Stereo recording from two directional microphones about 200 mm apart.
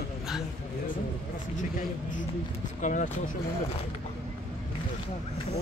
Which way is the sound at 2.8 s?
40° left (ahead or behind).